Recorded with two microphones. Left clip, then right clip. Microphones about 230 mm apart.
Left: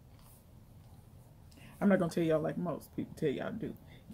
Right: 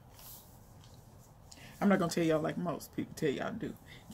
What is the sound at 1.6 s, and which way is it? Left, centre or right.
Speech, centre.